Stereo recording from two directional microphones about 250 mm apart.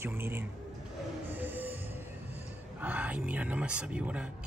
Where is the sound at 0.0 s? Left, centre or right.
Centre.